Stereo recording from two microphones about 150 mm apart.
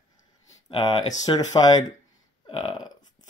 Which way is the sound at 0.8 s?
25° left (ahead or behind).